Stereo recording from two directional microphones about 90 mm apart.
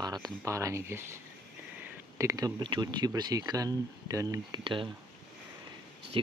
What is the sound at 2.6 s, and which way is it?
Speech, 60° right (ahead or behind).